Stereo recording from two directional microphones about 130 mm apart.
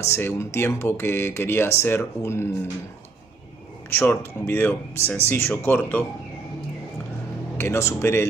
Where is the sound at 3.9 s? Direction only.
15° left (ahead or behind).